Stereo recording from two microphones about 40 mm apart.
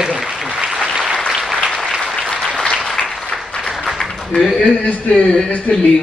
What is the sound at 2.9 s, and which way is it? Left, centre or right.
Applause, centre.